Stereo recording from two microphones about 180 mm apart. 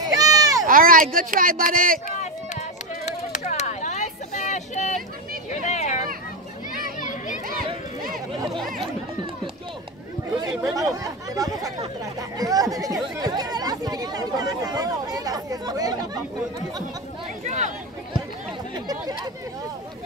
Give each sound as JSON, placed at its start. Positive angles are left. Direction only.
{"t": 0.0, "sound": "a sound", "side_deg": -20}
{"t": 0.7, "sound": "speech", "side_deg": -50}
{"t": 3.1, "sound": "a sound", "side_deg": 40}
{"t": 8.5, "sound": "chatter", "side_deg": 0}
{"t": 10.4, "sound": "speech", "side_deg": -20}
{"t": 17.5, "sound": "speech", "side_deg": -40}